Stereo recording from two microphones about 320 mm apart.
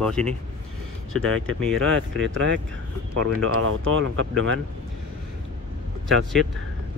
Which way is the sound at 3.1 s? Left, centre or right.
Right.